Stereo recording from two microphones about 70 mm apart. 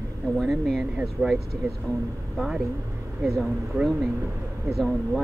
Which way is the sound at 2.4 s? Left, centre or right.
Centre.